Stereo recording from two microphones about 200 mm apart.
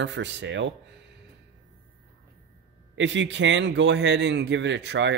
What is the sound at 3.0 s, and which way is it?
Speech, 65° right (ahead or behind).